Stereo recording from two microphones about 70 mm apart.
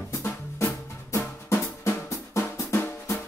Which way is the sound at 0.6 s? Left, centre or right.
Left.